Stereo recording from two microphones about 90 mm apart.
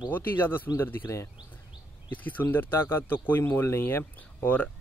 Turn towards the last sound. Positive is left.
turn(degrees=20)  # may be behind; listen again after turning